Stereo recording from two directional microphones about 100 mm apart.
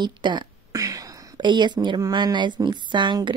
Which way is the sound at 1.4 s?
50° right (ahead or behind).